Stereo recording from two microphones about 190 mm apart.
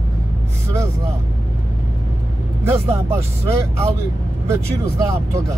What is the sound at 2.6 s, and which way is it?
Speech, 15° right (ahead or behind).